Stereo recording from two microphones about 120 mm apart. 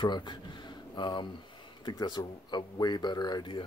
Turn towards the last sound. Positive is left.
turn(degrees=40)  # may be behind; listen again after turning